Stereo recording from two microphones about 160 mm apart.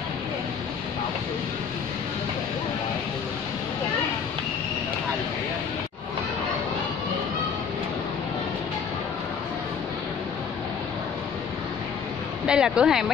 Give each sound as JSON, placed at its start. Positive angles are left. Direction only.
{"t": 12.4, "sound": "speech", "side_deg": -5}